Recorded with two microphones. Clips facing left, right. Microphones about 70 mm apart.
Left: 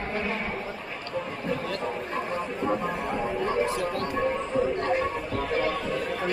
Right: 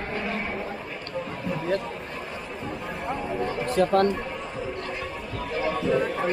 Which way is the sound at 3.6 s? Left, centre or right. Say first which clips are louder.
Right 7 dB; right.